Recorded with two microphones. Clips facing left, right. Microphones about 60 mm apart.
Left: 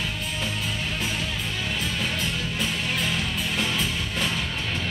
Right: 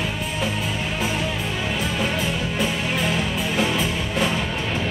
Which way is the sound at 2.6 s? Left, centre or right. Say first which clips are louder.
Right 4 dB; centre.